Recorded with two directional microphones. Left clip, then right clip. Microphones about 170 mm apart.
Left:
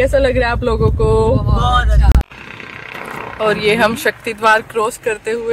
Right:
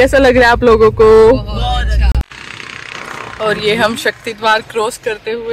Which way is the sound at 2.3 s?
55° left (ahead or behind).